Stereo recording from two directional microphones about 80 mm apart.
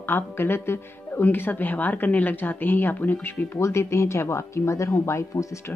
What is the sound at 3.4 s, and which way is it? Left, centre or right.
Speech, left.